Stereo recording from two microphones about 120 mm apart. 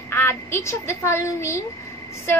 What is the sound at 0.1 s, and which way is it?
Speech, 20° left (ahead or behind).